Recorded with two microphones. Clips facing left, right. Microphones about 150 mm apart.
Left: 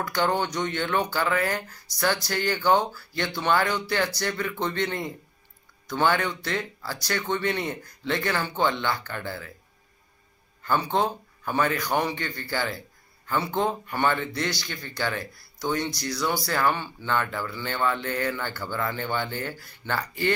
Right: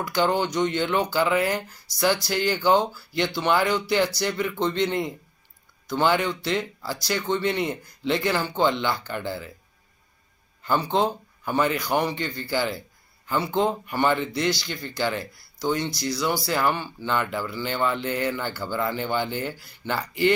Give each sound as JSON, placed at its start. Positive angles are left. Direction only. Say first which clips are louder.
{"t": 0.0, "sound": "speech", "louder": "right 2 dB", "side_deg": -10}
{"t": 5.9, "sound": "speech", "louder": "right 2 dB", "side_deg": -10}
{"t": 10.6, "sound": "speech", "louder": "right 2 dB", "side_deg": -20}
{"t": 13.6, "sound": "speech", "louder": "right 4 dB", "side_deg": -20}